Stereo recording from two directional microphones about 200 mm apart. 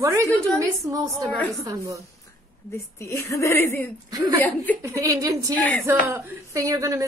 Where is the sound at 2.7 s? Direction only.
15° left (ahead or behind).